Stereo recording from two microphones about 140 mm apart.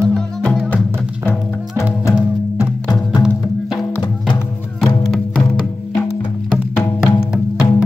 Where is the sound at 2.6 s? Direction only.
25° left (ahead or behind).